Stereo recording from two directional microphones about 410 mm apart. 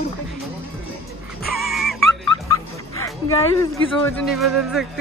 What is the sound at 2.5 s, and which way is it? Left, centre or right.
Bow-wow, centre.